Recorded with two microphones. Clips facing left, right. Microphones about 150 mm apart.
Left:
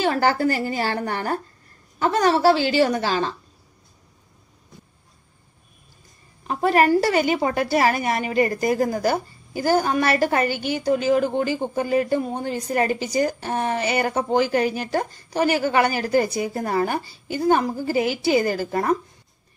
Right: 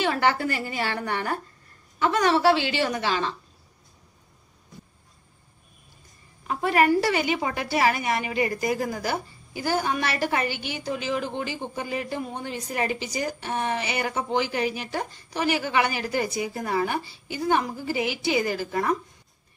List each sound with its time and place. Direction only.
0.0 s a woman's voice: 35° left (ahead or behind)
6.4 s a woman's voice: 35° left (ahead or behind)